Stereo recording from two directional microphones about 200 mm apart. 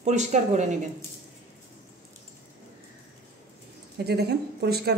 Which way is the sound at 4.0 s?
55° right (ahead or behind).